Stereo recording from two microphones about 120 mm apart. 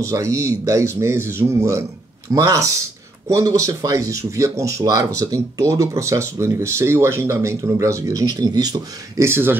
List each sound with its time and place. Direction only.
0.0 s speech: 25° right (ahead or behind)
9.3 s speech: 20° right (ahead or behind)